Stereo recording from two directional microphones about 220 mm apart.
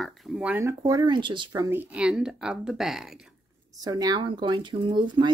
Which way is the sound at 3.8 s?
15° right (ahead or behind).